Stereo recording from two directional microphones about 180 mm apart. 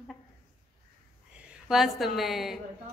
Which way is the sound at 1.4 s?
Centre (ahead or behind).